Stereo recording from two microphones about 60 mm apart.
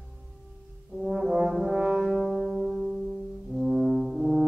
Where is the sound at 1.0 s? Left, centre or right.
Centre.